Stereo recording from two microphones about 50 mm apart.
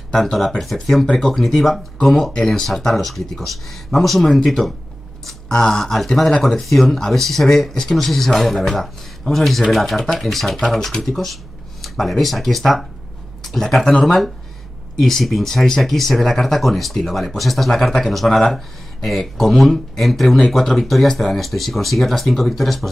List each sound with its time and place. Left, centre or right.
0.1 s speech: centre